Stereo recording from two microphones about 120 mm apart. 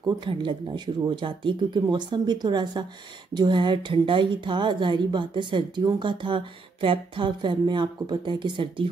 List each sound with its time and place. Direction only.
0.0 s a woman's voice: 40° right (ahead or behind)